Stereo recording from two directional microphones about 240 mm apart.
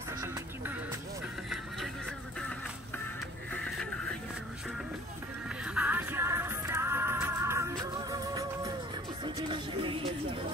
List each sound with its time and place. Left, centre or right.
3.5 s music: centre
5.8 s music: centre